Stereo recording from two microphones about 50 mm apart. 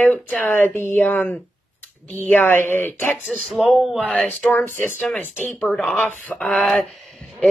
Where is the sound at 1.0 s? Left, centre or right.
Left.